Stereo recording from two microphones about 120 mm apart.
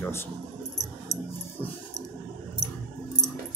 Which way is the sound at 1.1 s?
70° right (ahead or behind).